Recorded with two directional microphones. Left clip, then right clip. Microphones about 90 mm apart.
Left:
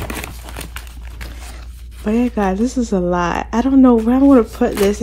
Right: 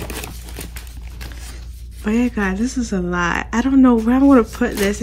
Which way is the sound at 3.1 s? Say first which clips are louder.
Left 2 dB; 30° left (ahead or behind).